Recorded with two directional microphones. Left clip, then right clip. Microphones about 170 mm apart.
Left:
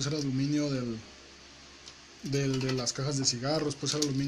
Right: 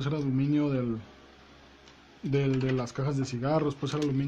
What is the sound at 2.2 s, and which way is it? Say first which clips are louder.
Speech: right 3 dB; 35° right (ahead or behind).